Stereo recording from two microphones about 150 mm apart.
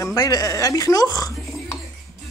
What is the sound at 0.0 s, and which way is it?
Speech, 25° left (ahead or behind).